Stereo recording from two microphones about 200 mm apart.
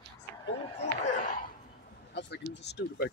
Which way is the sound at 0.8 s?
40° left (ahead or behind).